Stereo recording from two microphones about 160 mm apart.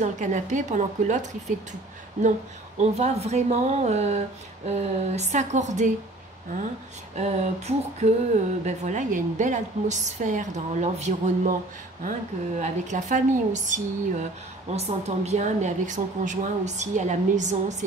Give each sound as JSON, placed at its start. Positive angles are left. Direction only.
{"t": 0.0, "sound": "a woman's voice", "side_deg": -50}
{"t": 2.8, "sound": "a woman's voice", "side_deg": -45}
{"t": 7.2, "sound": "a woman's voice", "side_deg": -45}